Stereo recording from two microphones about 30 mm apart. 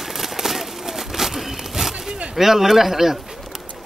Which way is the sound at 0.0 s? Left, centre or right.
Centre.